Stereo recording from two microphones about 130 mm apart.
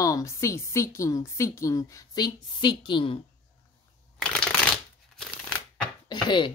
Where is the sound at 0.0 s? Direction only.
25° left (ahead or behind).